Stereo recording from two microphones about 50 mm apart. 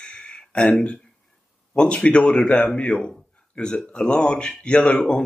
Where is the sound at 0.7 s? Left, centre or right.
Centre.